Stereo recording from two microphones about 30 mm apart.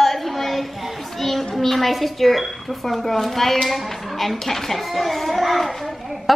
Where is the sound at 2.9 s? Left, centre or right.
Centre.